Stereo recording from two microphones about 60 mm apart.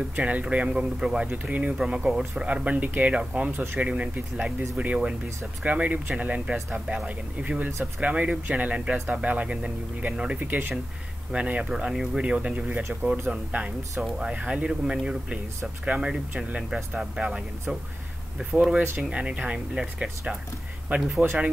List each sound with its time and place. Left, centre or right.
0.2 s speech: right
1.4 s speech: right
1.7 s speech: centre
3.5 s speech: right
3.8 s speech: centre
10.4 s speech: right
11.7 s speech: centre
12.2 s speech: centre